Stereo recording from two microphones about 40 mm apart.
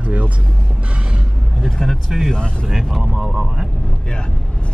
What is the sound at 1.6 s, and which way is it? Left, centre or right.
Speech, centre.